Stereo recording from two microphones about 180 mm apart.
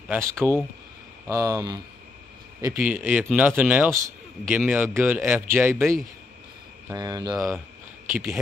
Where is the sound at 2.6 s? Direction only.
10° right (ahead or behind).